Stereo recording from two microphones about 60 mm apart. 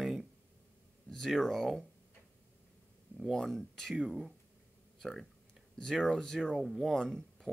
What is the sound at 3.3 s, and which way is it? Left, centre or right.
Speech, centre.